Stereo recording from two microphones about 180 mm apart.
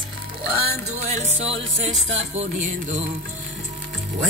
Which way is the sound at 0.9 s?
35° right (ahead or behind).